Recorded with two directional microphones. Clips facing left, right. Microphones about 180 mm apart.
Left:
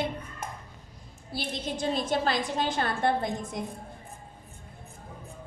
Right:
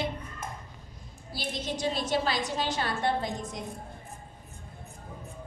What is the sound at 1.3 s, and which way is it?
A woman's voice, 55° left (ahead or behind).